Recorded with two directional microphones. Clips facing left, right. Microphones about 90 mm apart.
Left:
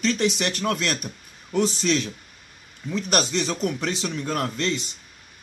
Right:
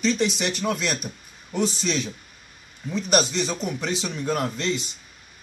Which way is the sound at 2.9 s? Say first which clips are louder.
Right 1 dB; 15° right (ahead or behind).